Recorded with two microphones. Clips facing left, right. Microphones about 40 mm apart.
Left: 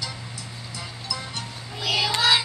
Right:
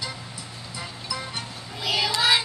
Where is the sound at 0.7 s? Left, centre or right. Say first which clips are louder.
Right 1 dB; centre.